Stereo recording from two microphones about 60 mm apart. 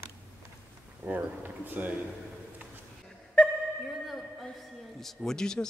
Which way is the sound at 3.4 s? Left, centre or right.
Centre.